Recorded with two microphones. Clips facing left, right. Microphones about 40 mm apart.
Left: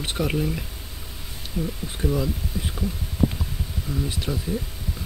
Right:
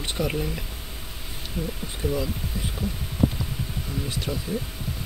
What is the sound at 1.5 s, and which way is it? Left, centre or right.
Speech, centre.